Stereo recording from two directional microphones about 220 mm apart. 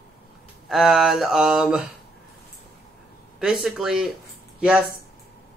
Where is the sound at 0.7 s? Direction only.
Centre (ahead or behind).